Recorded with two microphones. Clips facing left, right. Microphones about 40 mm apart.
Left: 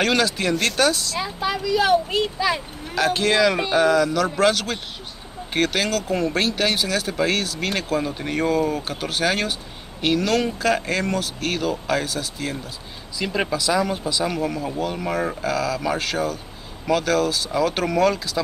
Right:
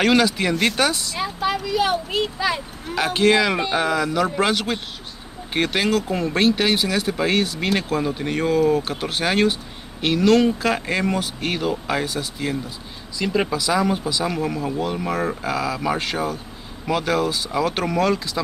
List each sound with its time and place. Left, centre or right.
0.0 s speech: centre
13.2 s speech: centre